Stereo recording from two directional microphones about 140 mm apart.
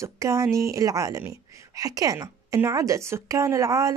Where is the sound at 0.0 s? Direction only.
20° right (ahead or behind).